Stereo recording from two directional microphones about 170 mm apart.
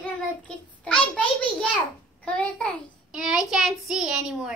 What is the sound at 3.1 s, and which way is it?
Speech, 5° right (ahead or behind).